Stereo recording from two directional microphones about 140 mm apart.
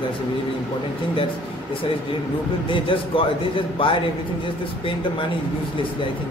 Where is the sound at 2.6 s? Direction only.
35° left (ahead or behind).